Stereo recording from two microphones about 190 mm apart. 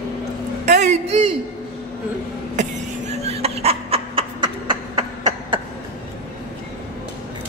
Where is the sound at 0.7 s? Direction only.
40° right (ahead or behind).